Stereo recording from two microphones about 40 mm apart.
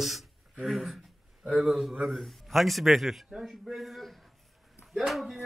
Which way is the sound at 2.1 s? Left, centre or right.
Centre.